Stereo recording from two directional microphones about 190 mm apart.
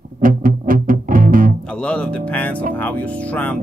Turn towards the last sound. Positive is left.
turn(degrees=5)  # may be behind; listen again after turning